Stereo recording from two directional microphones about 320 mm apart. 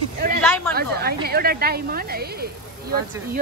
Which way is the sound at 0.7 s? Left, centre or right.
Right.